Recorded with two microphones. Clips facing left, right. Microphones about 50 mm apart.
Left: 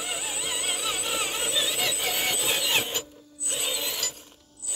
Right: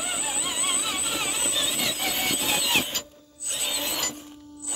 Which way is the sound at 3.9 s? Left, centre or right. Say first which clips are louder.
Right 3 dB; right.